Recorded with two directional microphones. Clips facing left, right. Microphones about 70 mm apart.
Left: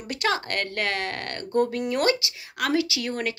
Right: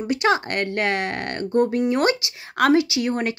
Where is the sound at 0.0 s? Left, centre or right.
Centre.